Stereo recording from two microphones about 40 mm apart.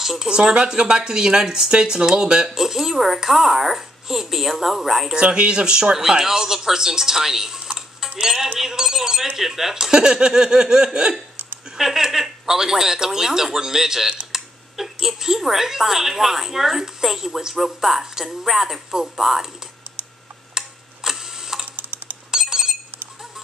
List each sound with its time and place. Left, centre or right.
0.0 s speech: centre
5.3 s speech: right
11.7 s speech: centre
20.5 s tick-tock: centre
21.7 s a sound: right
22.3 s chink: centre